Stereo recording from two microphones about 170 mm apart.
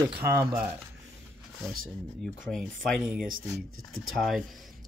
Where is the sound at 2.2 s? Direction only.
Centre (ahead or behind).